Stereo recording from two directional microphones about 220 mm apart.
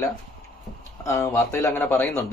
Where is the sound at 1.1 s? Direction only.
15° left (ahead or behind).